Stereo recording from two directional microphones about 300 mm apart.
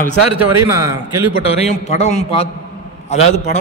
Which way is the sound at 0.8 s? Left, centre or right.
Centre.